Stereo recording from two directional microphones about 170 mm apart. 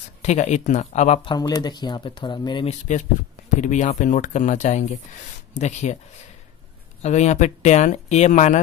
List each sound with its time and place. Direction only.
0.2 s speech: 40° left (ahead or behind)
1.3 s speech: 25° left (ahead or behind)
3.4 s speech: 45° left (ahead or behind)
7.0 s speech: 40° left (ahead or behind)